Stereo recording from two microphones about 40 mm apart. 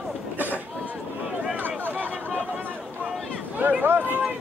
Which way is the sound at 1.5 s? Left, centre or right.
Right.